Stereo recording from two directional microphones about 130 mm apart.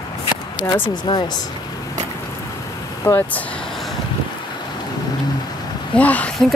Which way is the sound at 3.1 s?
15° left (ahead or behind).